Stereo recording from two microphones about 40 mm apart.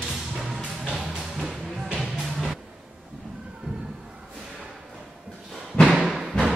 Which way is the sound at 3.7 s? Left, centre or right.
Right.